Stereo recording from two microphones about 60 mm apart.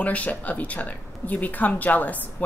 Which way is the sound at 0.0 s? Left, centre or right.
Left.